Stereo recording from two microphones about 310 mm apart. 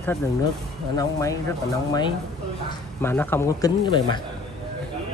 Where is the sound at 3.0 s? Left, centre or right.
Centre.